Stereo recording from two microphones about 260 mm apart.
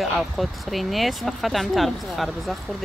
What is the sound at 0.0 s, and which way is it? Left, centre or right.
Speech, centre.